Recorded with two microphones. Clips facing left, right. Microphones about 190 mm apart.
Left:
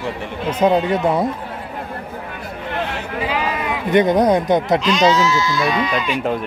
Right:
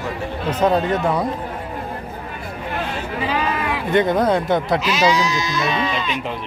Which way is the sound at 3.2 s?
20° left (ahead or behind).